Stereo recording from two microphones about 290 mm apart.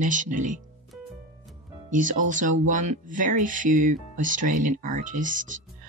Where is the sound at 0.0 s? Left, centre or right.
Right.